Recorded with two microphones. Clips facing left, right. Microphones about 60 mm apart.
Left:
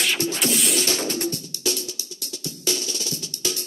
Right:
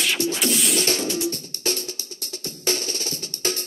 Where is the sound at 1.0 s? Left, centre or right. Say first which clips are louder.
Right 1 dB; left.